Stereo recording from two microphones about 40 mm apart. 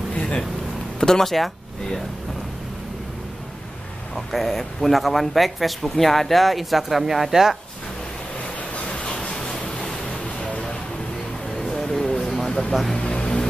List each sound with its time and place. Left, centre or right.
0.1 s vehicle: left
0.9 s speech: centre
4.1 s speech: centre
8.5 s a sound: left; by 10.1 s centre
11.6 s a sound: centre
12.4 s music: centre
12.9 s vehicle: left